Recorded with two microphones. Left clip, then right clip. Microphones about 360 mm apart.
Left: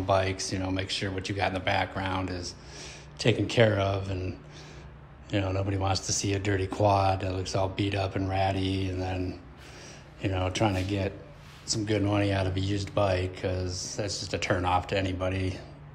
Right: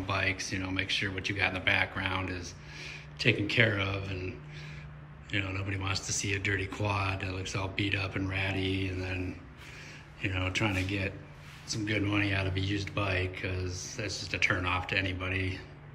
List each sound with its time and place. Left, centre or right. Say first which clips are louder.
0.0 s speech: left 5 dB; centre
5.3 s speech: left 4 dB; centre
10.2 s speech: left 3 dB; centre